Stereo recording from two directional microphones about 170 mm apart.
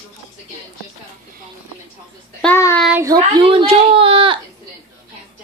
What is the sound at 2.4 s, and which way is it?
Child singing, 10° left (ahead or behind).